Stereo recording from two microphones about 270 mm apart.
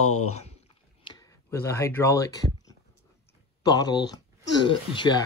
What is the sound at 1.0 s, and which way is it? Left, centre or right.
Speech, centre.